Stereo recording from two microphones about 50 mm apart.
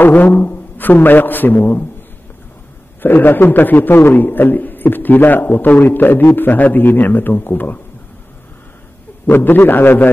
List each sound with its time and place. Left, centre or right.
0.0 s a man's voice: left
3.0 s a man's voice: left
9.2 s a man's voice: left